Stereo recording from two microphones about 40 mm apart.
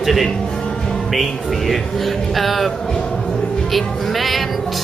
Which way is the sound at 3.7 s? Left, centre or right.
Centre.